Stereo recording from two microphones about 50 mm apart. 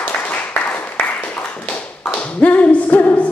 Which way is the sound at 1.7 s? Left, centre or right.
Left.